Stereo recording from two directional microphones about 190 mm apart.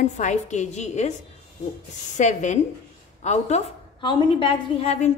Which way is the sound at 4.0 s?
25° left (ahead or behind).